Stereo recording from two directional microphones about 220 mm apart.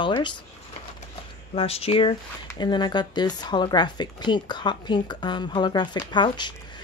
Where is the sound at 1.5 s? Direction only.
25° left (ahead or behind).